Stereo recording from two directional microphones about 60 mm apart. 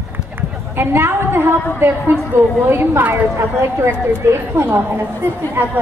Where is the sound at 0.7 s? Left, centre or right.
Right.